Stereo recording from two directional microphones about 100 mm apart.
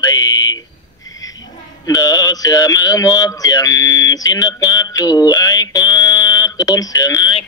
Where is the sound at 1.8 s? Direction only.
40° left (ahead or behind).